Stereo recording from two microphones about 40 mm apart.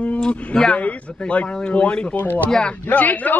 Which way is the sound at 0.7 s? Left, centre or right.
Left.